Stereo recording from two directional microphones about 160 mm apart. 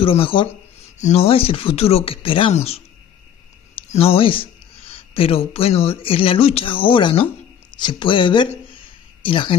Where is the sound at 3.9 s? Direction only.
40° left (ahead or behind).